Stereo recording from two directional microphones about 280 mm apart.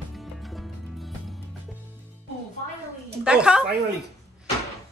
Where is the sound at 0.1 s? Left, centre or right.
Centre.